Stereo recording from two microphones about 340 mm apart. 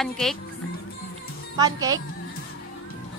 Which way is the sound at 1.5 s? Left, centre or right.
Centre.